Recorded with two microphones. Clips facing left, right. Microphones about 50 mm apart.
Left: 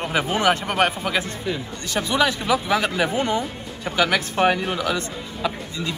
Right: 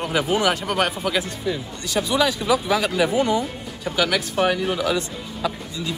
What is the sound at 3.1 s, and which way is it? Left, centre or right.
Speech, left.